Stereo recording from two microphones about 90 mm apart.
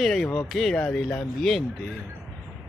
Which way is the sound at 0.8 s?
15° left (ahead or behind).